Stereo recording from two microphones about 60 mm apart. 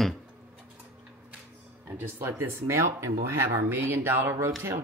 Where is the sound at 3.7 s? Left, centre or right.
Right.